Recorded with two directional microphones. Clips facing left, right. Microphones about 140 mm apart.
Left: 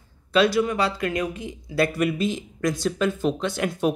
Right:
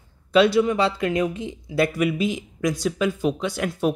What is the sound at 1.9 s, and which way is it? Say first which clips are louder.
Speech: right 1 dB; 5° right (ahead or behind).